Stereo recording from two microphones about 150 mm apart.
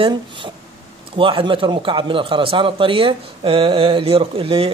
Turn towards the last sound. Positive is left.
turn(degrees=-40)  # may be behind; listen again after turning